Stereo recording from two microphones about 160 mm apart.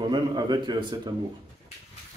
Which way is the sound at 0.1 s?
25° right (ahead or behind).